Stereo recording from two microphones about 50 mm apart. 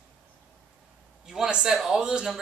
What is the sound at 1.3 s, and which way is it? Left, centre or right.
Speech, centre.